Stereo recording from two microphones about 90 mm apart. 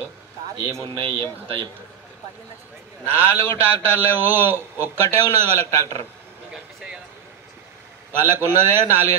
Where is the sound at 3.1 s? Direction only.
25° left (ahead or behind).